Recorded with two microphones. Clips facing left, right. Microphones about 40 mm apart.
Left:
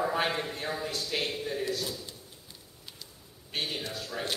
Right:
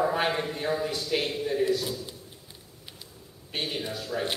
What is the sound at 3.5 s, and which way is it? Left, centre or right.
Speech, centre.